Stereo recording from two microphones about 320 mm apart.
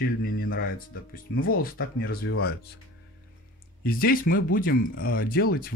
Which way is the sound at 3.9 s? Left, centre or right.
Left.